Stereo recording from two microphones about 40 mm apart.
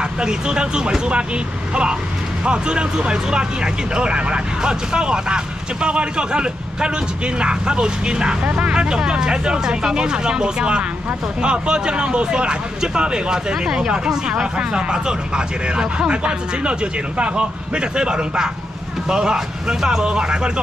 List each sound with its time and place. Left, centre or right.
0.2 s speech: centre
8.5 s speech: right
8.7 s speech: right